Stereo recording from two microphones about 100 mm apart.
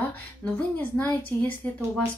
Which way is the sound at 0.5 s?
15° left (ahead or behind).